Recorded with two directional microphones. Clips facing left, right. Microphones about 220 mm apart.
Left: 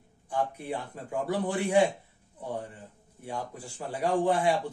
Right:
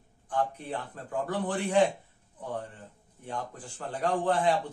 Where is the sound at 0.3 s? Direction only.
10° left (ahead or behind).